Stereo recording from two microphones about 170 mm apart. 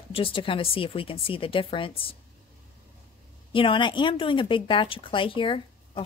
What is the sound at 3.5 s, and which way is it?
A woman's voice, 30° left (ahead or behind).